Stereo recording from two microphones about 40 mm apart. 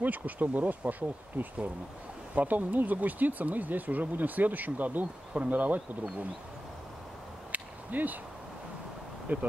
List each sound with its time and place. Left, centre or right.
0.0 s speech: right
7.5 s a sound: right
9.3 s speech: right